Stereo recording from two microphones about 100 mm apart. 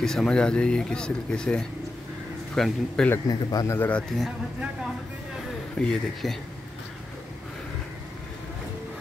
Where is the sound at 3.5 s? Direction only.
35° left (ahead or behind).